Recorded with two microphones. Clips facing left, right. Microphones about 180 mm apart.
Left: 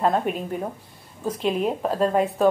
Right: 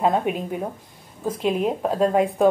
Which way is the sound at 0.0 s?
5° right (ahead or behind).